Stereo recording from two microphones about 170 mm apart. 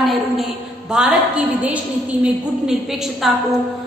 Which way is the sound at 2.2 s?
5° right (ahead or behind).